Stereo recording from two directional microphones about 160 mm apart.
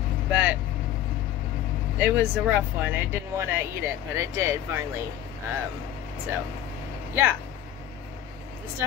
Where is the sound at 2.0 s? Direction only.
10° right (ahead or behind).